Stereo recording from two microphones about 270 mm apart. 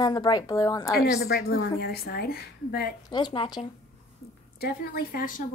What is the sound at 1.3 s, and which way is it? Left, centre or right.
Speech, left.